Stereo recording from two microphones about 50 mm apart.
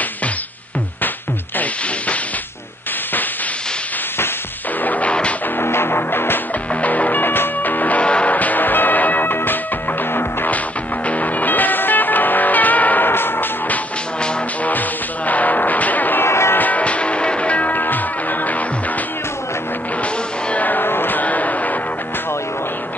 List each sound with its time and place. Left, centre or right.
4.8 s music: left
5.6 s music: left
6.7 s music: left
8.0 s music: left
14.6 s music: left
16.3 s music: left
16.5 s music: left
20.0 s music: left